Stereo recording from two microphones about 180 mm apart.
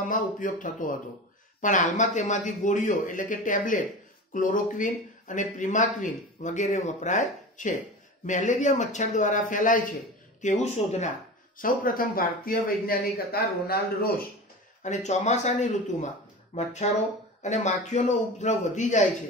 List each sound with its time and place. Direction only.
0.1 s speech: 50° left (ahead or behind)
14.8 s speech: 40° left (ahead or behind)